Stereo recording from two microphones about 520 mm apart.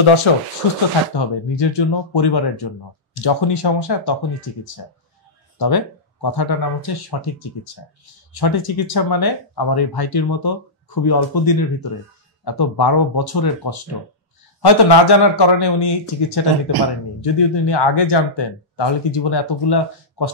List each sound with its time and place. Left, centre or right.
0.3 s speech: left
1.1 s speech: left
5.6 s speech: left